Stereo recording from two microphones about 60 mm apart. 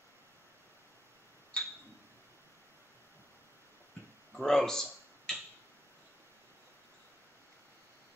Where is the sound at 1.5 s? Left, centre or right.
Centre.